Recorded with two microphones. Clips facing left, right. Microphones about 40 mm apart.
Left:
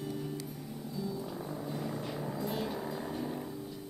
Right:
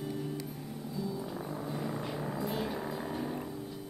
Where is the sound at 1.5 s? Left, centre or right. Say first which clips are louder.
Right 1 dB; centre.